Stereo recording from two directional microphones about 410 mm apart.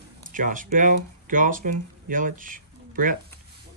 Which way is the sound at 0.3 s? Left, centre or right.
Centre.